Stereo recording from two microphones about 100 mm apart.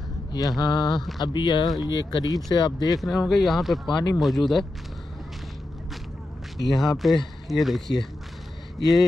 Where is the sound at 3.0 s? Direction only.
Centre (ahead or behind).